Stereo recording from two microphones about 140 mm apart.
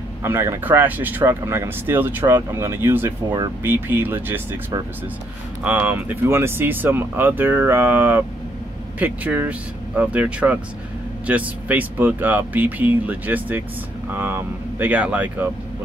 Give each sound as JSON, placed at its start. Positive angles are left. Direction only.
{"t": 0.2, "sound": "speech", "side_deg": -15}
{"t": 3.3, "sound": "speech", "side_deg": -30}
{"t": 3.6, "sound": "speech", "side_deg": -15}
{"t": 5.6, "sound": "speech", "side_deg": -10}